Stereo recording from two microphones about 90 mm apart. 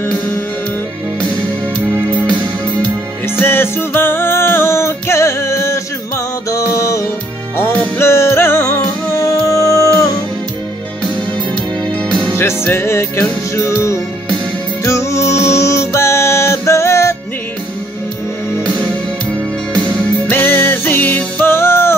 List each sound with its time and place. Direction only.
1.8 s music: 25° right (ahead or behind)
2.2 s music: 55° right (ahead or behind)
3.3 s music: 25° left (ahead or behind)
7.5 s music: 25° left (ahead or behind)
12.4 s music: 25° left (ahead or behind)
20.2 s music: 20° left (ahead or behind)